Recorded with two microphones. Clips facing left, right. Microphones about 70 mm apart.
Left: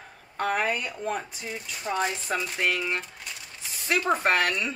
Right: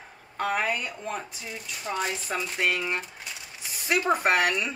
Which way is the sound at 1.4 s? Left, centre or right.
Left.